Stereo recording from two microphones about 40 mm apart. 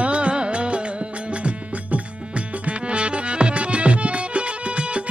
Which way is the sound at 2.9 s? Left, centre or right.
Right.